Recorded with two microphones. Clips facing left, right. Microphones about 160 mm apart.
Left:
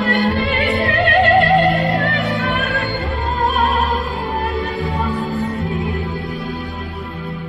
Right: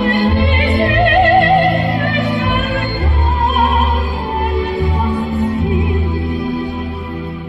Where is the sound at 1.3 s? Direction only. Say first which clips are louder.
Right 2 dB; centre (ahead or behind).